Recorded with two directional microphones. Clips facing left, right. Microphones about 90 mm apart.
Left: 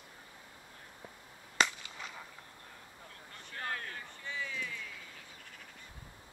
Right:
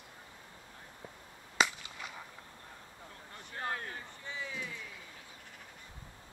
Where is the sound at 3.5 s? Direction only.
20° right (ahead or behind).